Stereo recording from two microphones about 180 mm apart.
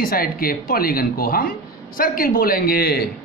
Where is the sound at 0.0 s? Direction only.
55° left (ahead or behind).